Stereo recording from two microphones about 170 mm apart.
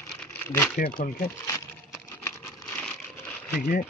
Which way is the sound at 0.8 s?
55° left (ahead or behind).